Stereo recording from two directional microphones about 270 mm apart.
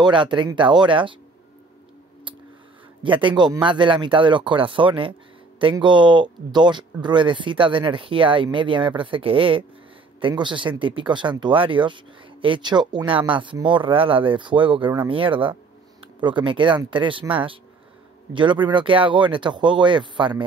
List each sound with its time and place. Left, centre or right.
0.0 s speech: centre
3.0 s speech: centre